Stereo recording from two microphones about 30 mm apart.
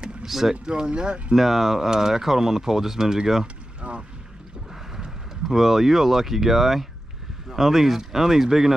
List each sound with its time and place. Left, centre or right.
0.2 s speech: centre
0.7 s speech: right
1.3 s speech: centre
3.8 s boat: right
4.9 s speech: centre